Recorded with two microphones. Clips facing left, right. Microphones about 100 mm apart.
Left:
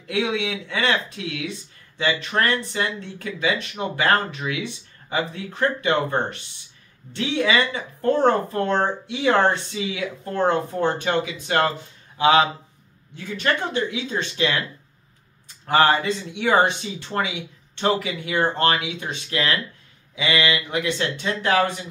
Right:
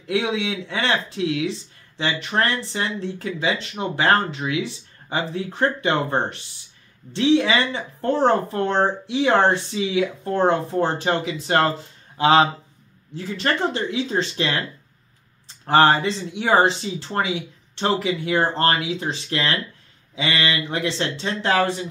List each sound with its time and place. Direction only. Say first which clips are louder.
0.0 s speech: right 1 dB; 25° right (ahead or behind)